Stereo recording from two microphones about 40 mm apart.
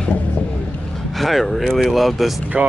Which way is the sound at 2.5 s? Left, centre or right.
Right.